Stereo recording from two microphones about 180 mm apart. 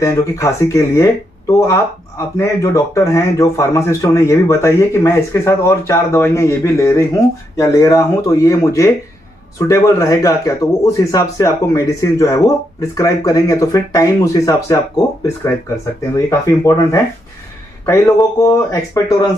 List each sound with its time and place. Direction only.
0.0 s speech: 15° left (ahead or behind)